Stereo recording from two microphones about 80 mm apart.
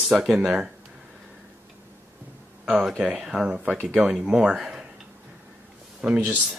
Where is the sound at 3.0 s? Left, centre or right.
Centre.